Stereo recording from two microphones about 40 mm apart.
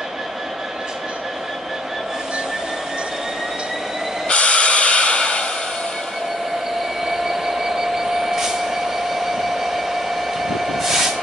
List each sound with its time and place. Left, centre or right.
4.3 s snort: left
7.2 s vehicle: centre